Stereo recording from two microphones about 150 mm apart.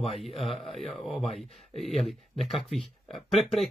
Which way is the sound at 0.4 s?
Centre (ahead or behind).